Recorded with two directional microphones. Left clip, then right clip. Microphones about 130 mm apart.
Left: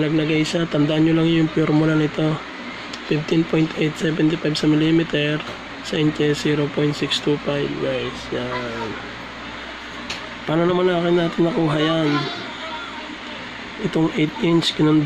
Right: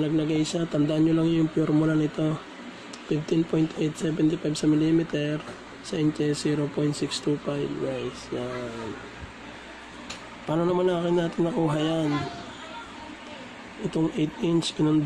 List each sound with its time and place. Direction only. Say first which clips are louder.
0.0 s speech: left 6 dB; 20° right (ahead or behind)
10.5 s speech: left 6 dB; 15° right (ahead or behind)
13.8 s speech: left 6 dB; 15° right (ahead or behind)